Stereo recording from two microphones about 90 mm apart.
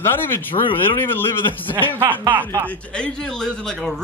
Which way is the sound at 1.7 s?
20° left (ahead or behind).